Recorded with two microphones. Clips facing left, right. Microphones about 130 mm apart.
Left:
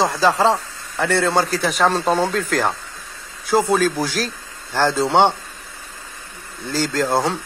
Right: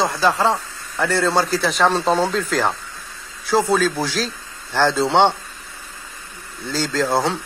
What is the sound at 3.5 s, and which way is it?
Speech, centre (ahead or behind).